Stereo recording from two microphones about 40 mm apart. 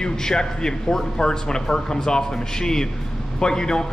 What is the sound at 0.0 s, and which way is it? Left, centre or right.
A man's voice, centre.